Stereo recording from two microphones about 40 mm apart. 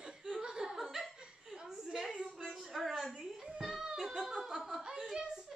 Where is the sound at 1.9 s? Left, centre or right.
Centre.